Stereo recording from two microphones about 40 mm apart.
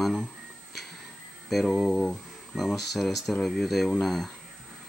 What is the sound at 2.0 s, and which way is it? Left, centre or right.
Speech, centre.